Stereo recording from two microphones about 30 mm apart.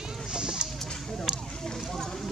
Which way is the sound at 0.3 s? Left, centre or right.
Right.